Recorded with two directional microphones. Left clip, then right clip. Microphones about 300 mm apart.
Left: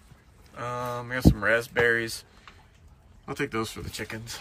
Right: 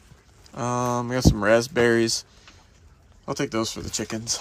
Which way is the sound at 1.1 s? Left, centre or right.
Centre.